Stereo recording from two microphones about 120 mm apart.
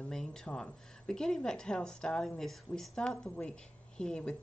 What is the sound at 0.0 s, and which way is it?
A woman's voice, 5° left (ahead or behind).